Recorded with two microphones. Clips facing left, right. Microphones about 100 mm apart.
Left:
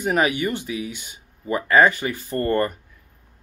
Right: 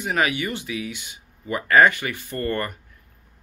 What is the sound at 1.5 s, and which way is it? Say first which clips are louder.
Speech: even; 20° left (ahead or behind).